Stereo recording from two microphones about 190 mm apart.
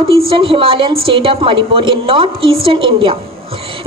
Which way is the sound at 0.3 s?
30° right (ahead or behind).